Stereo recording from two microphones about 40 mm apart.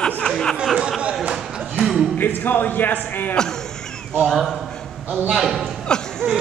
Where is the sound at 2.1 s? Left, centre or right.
Left.